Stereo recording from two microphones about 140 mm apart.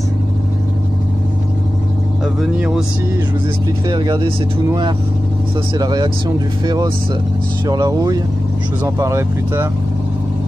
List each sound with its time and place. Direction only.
3.9 s speech: 30° right (ahead or behind)
5.8 s speech: 30° right (ahead or behind)